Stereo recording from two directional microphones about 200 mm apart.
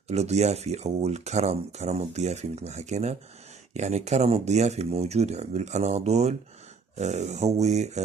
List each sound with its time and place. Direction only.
0.1 s speech: 35° right (ahead or behind)